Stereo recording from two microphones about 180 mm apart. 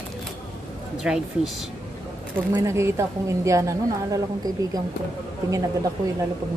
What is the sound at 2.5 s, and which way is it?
A woman's voice, 15° right (ahead or behind).